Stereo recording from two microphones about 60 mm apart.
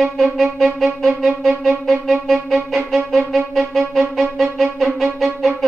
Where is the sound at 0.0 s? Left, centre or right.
Centre.